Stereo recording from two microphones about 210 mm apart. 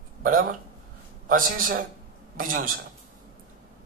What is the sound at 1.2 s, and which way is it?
Speech, 40° right (ahead or behind).